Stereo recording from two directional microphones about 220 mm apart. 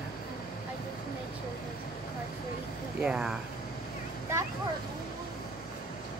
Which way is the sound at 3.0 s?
5° right (ahead or behind).